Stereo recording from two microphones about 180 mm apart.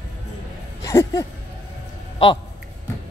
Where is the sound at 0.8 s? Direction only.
15° left (ahead or behind).